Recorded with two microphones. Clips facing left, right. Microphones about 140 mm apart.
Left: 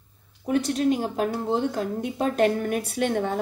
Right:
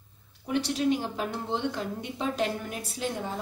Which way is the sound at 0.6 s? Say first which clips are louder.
Left 3 dB; centre (ahead or behind).